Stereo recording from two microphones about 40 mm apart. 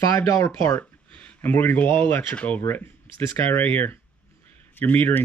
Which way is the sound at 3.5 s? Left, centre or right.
Left.